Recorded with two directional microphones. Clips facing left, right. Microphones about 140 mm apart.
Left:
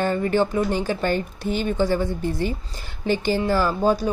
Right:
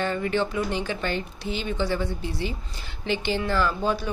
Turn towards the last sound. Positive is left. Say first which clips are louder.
# left 5 dB
turn(degrees=40)  # may be behind; listen again after turning